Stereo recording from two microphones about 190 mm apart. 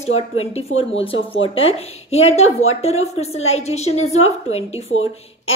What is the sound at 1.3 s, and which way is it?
A woman's voice, 30° left (ahead or behind).